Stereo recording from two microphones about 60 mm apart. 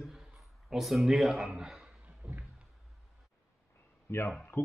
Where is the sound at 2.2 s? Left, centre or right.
Centre.